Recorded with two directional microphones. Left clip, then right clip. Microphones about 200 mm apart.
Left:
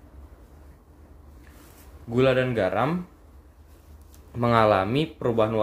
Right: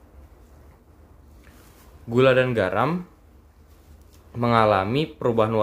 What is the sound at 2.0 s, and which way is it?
Speech, 20° right (ahead or behind).